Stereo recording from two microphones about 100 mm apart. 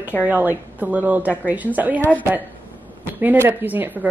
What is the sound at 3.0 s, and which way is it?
Speech, 20° right (ahead or behind).